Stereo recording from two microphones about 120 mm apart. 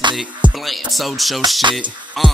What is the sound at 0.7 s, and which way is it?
Speech, centre (ahead or behind).